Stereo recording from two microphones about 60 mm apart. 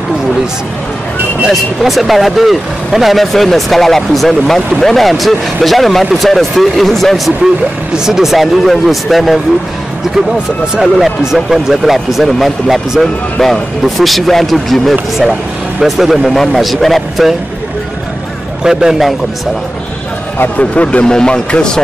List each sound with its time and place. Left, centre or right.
1.5 s speech: centre
8.0 s speech: centre
10.3 s speech: centre
11.3 s speech: centre
18.6 s speech: centre
20.3 s speech: left